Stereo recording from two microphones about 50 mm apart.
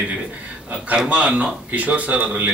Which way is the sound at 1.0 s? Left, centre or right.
Right.